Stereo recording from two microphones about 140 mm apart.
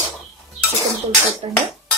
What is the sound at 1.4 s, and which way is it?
Dishes, 40° right (ahead or behind).